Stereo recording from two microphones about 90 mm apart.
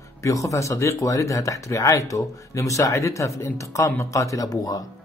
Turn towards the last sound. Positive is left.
turn(degrees=45)  # may be behind; listen again after turning